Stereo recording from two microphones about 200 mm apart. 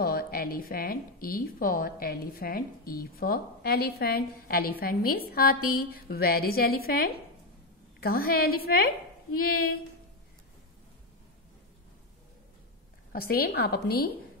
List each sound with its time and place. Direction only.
0.0 s speech: 50° left (ahead or behind)
13.1 s speech: 50° left (ahead or behind)